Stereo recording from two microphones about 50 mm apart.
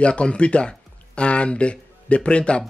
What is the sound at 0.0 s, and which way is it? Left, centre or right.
Speech, left.